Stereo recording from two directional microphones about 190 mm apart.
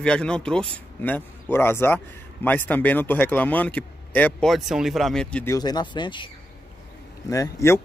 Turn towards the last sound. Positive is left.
turn(degrees=15)  # may be behind; listen again after turning